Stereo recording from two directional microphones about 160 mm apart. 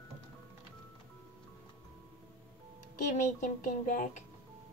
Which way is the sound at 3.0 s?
55° left (ahead or behind).